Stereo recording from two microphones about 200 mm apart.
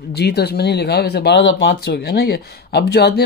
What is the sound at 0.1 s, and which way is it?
Speech, 55° left (ahead or behind).